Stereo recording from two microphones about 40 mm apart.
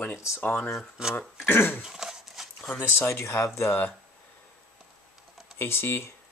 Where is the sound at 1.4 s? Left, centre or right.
Left.